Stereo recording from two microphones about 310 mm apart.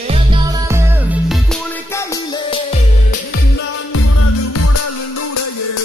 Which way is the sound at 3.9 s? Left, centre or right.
Left.